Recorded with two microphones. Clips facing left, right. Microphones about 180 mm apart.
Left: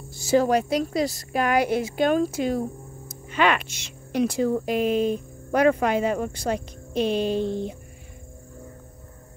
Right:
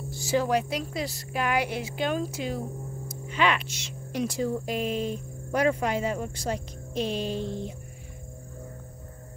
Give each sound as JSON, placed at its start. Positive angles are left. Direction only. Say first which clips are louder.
{"t": 0.3, "sound": "a woman's voice", "louder": "left 5 dB", "side_deg": 40}